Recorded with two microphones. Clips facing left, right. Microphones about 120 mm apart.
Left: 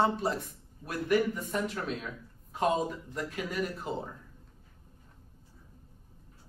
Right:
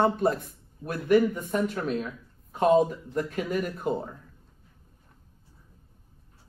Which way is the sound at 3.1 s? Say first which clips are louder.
Right 6 dB; 45° right (ahead or behind).